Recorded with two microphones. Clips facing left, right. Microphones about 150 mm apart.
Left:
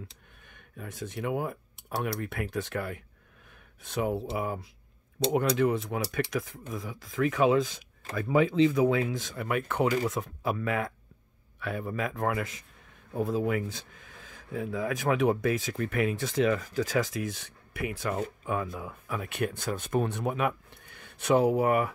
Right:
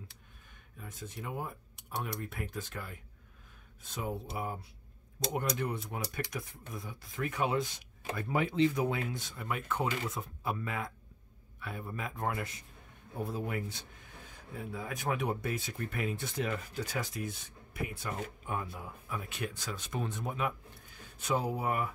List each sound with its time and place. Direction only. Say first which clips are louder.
0.5 s speech: left 7 dB; 70° left (ahead or behind); by 7.5 s 90° left
8.9 s speech: left 8 dB; 90° left
9.6 s speech: left 7 dB; 65° left (ahead or behind)
10.0 s speech: left 7 dB; 80° left